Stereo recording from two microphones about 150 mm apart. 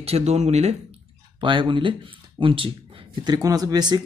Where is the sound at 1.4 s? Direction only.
35° right (ahead or behind).